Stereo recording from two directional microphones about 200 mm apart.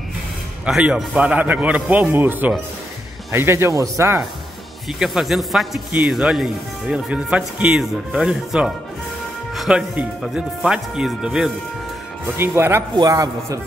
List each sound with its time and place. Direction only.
0.7 s a man's voice: centre (ahead or behind)
4.9 s a man's voice: centre (ahead or behind)